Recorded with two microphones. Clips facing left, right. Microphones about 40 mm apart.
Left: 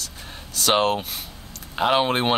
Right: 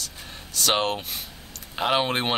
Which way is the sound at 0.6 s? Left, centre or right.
Centre.